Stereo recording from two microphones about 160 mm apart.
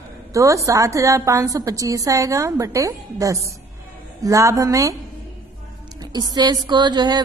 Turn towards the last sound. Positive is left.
turn(degrees=-25)  # may be behind; listen again after turning